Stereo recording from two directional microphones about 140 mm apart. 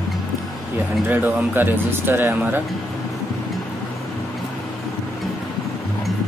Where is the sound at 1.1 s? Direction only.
15° right (ahead or behind).